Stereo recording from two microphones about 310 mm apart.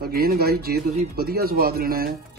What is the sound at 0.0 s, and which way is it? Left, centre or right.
Speech, right.